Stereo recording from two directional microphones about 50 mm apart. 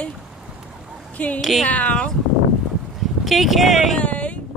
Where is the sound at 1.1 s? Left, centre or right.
Left.